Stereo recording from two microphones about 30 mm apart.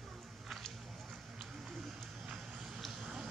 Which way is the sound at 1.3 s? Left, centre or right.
Centre.